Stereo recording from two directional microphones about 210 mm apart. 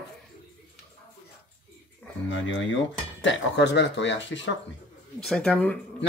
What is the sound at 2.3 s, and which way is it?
Speech, 65° left (ahead or behind).